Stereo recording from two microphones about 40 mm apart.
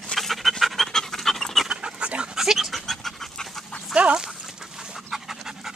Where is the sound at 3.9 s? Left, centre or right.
Right.